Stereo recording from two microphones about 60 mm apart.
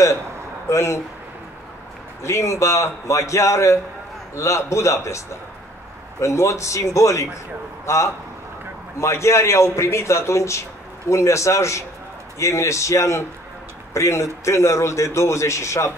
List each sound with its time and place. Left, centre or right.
0.7 s a man's voice: left
2.2 s a man's voice: left
6.2 s a man's voice: left